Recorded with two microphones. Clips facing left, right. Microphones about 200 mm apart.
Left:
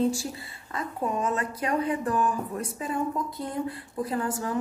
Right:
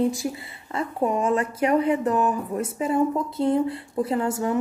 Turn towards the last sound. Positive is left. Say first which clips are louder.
# right 5 dB
turn(degrees=-25)  # may be behind; listen again after turning